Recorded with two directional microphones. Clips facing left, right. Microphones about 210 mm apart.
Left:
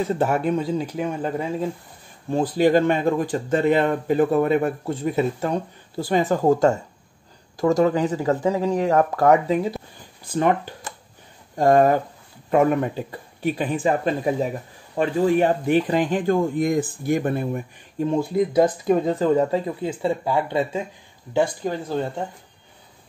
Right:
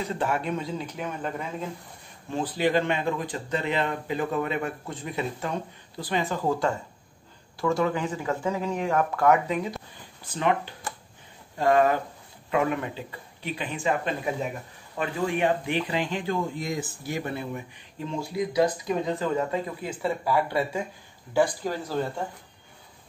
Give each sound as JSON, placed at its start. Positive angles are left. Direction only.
{"t": 0.0, "sound": "speech", "side_deg": 45}
{"t": 0.9, "sound": "speech", "side_deg": 30}
{"t": 2.5, "sound": "speech", "side_deg": 45}